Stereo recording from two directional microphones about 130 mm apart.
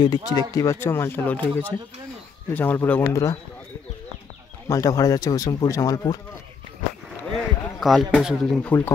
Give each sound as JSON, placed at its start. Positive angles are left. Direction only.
{"t": 0.0, "sound": "speech", "side_deg": 30}
{"t": 4.6, "sound": "speech", "side_deg": 25}
{"t": 7.3, "sound": "a sound", "side_deg": 0}
{"t": 8.6, "sound": "speech", "side_deg": 15}